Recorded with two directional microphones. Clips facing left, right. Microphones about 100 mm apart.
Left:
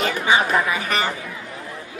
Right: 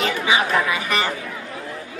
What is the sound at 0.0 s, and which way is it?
Chatter, 40° left (ahead or behind).